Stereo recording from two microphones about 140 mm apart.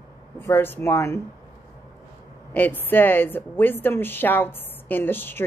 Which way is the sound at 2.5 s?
15° left (ahead or behind).